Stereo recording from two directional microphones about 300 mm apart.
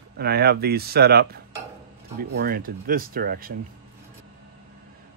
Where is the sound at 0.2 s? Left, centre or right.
Right.